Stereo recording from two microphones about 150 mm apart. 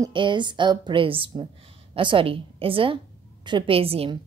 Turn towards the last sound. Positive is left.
turn(degrees=-40)  # may be behind; listen again after turning